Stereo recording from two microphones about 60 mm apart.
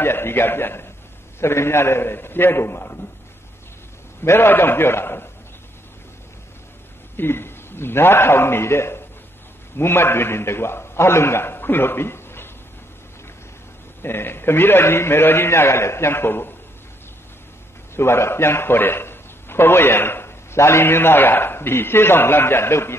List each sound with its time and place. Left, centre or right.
0.0 s a man's voice: left
4.2 s a man's voice: left
7.2 s a man's voice: left
14.0 s a man's voice: left
17.9 s a man's voice: left